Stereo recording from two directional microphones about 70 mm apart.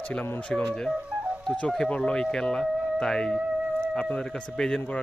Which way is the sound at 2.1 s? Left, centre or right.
Centre.